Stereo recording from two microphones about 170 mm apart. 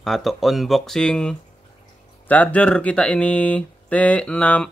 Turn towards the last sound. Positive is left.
turn(degrees=5)  # may be behind; listen again after turning